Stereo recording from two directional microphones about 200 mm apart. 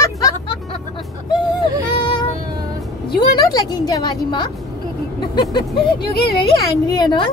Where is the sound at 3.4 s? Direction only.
20° left (ahead or behind).